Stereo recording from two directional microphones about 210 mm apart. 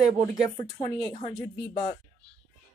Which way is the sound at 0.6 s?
20° left (ahead or behind).